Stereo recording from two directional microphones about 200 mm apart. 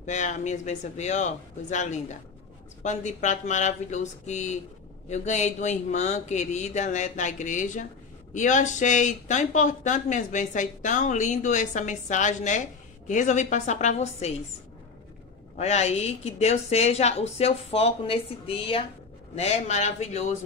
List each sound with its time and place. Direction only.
0.0 s speech: 35° left (ahead or behind)
15.5 s speech: 35° left (ahead or behind)